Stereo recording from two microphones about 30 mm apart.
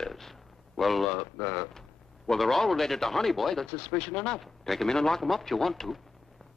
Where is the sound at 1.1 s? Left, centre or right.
Centre.